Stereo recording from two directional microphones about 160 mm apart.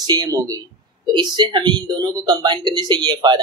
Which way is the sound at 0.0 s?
25° right (ahead or behind).